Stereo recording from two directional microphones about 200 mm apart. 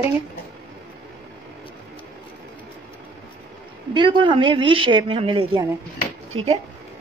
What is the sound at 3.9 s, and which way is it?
A woman's voice, 25° right (ahead or behind).